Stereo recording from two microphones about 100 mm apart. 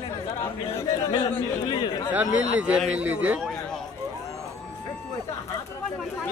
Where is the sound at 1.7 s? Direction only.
50° left (ahead or behind).